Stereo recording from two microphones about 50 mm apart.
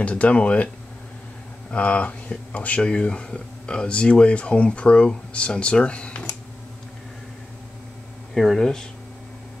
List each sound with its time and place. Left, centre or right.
0.0 s speech: left
1.7 s speech: left
8.4 s speech: centre